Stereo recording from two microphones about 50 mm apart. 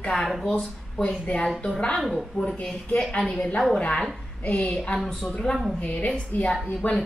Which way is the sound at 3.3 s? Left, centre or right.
Left.